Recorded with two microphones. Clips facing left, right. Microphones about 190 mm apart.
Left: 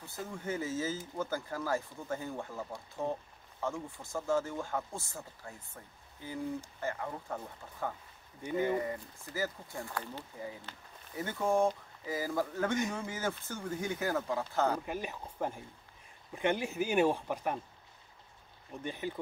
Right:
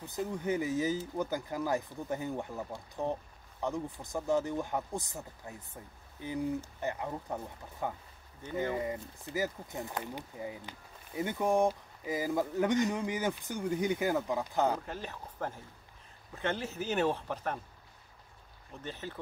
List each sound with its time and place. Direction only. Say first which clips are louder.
0.0 s speech: right 6 dB; 20° right (ahead or behind)
3.6 s speech: right 2 dB; 20° right (ahead or behind)
8.4 s speech: left 4 dB; 10° left (ahead or behind)
8.7 s speech: even; 20° right (ahead or behind)
14.9 s speech: left 3 dB; 15° left (ahead or behind)
18.8 s speech: left 4 dB; 15° left (ahead or behind)